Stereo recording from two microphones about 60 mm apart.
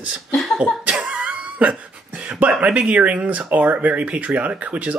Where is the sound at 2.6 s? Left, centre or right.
Centre.